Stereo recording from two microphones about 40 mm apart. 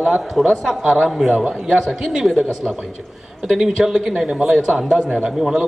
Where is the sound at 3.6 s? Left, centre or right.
Centre.